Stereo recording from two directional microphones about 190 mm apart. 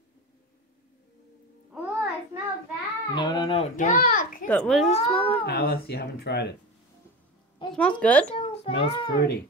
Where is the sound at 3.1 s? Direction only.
25° left (ahead or behind).